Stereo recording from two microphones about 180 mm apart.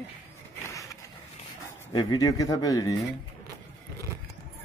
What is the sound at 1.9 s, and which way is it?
Speech, 20° left (ahead or behind).